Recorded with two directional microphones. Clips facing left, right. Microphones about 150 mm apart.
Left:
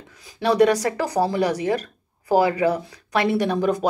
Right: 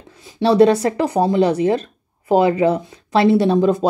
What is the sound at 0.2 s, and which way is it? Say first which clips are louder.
Speech: right 5 dB; 25° right (ahead or behind).